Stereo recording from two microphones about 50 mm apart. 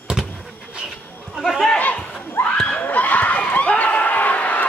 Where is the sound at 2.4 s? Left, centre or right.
Left.